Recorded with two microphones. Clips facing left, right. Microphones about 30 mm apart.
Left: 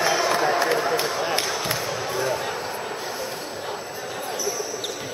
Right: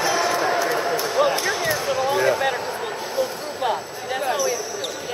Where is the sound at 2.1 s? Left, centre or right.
Right.